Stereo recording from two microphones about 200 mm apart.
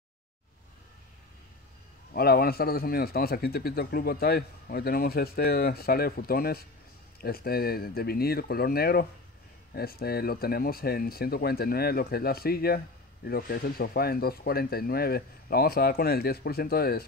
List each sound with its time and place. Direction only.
2.1 s speech: 50° left (ahead or behind)